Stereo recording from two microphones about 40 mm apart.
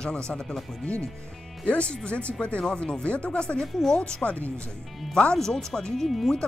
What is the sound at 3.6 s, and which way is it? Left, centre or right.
Speech, centre.